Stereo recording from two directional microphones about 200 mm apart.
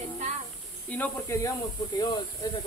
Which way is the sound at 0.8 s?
5° left (ahead or behind).